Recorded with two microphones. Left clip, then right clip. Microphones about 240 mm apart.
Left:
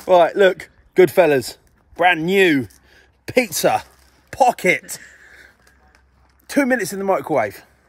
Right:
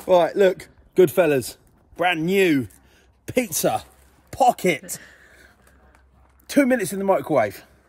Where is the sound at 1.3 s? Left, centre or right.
Centre.